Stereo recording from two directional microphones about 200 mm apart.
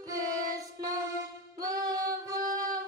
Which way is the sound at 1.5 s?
20° right (ahead or behind).